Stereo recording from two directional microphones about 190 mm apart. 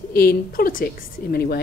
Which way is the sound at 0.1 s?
50° left (ahead or behind).